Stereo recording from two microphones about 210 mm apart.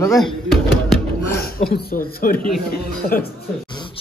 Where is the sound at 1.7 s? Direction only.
45° left (ahead or behind).